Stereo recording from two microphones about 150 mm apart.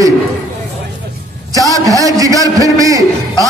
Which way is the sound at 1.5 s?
25° right (ahead or behind).